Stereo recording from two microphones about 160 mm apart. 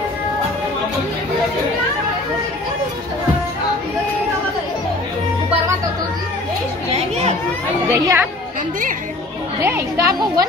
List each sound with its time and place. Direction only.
7.9 s a woman's voice: 15° right (ahead or behind)
9.6 s a woman's voice: 15° right (ahead or behind)